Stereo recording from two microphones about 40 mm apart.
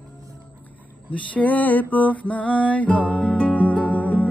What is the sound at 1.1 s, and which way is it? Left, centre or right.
Music, left.